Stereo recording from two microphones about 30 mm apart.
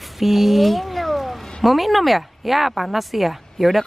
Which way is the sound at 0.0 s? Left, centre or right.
Centre.